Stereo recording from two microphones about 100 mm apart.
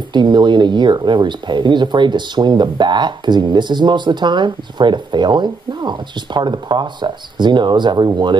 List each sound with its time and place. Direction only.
0.1 s speech: 50° right (ahead or behind)